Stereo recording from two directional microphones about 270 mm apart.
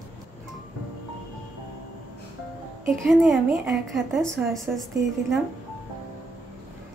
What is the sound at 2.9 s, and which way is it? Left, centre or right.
A woman's voice, centre.